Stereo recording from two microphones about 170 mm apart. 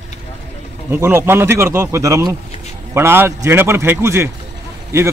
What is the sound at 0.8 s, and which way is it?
Speech, 15° right (ahead or behind).